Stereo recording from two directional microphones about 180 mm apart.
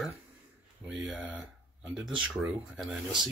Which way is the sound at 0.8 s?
Centre (ahead or behind).